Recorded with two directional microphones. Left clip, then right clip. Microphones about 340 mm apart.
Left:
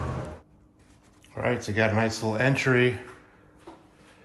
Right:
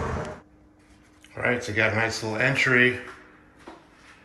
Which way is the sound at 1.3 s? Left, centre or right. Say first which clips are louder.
Right 2 dB; centre.